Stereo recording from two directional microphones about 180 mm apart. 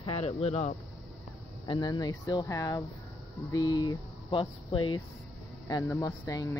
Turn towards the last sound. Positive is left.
turn(degrees=20)  # may be behind; listen again after turning